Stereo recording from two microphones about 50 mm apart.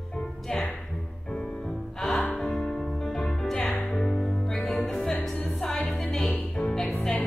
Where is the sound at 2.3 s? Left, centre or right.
Centre.